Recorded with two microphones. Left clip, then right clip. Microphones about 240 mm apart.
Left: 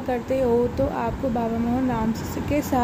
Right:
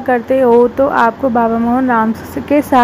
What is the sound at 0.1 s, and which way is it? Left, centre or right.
A woman's voice, centre.